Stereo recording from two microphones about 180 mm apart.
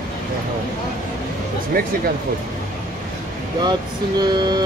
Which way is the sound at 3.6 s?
25° right (ahead or behind).